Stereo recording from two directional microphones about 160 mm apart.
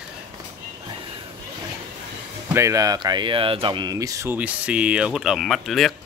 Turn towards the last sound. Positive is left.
turn(degrees=0)  # may be behind; listen again after turning